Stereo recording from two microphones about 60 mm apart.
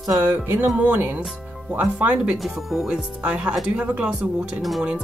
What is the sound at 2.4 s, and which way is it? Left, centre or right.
Speech, centre.